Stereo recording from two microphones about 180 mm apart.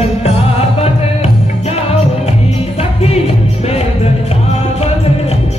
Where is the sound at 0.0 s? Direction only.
35° left (ahead or behind).